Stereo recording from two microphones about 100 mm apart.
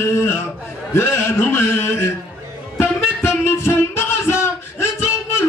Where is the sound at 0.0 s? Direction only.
25° left (ahead or behind).